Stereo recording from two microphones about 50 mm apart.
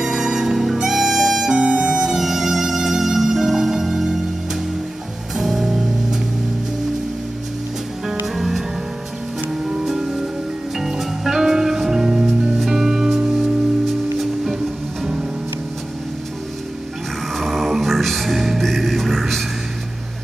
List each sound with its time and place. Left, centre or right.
0.0 s music: centre
1.5 s music: right
1.8 s music: centre
5.3 s music: centre
8.4 s music: centre
17.4 s music: centre